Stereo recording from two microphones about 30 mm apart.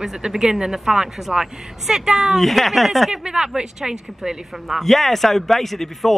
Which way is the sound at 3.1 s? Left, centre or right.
Right.